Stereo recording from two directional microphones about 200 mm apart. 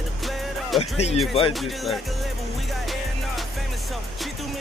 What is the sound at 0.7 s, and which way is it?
Speech, 30° left (ahead or behind).